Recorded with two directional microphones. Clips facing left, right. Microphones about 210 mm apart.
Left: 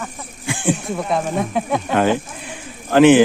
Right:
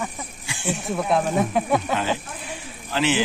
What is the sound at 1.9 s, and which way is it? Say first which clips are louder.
Speech: left 7 dB; 55° left (ahead or behind).